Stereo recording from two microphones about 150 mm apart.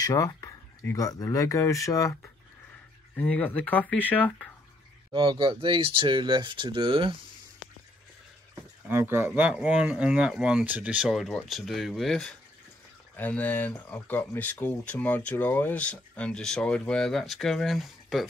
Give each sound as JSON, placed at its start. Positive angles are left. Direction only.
{"t": 0.0, "sound": "speech", "side_deg": 20}
{"t": 5.1, "sound": "speech", "side_deg": -35}
{"t": 8.8, "sound": "speech", "side_deg": -15}